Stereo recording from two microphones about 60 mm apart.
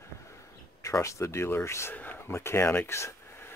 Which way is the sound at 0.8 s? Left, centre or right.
Left.